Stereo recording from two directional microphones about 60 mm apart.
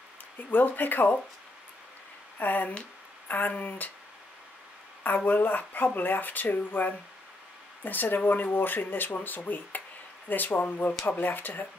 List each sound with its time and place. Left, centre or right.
0.5 s speech: left
2.3 s speech: left
5.0 s speech: left